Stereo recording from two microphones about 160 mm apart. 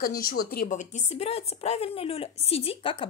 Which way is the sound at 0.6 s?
50° left (ahead or behind).